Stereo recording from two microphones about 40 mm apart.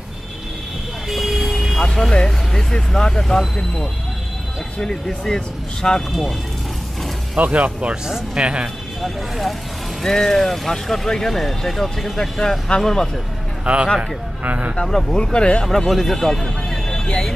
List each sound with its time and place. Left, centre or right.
1.0 s vehicle: centre
1.8 s speech: centre
7.3 s speech: right
8.4 s speech: right
9.0 s speech: centre
10.0 s speech: centre
13.7 s speech: right
14.4 s speech: right
14.9 s speech: centre
15.1 s speech: left
15.6 s speech: centre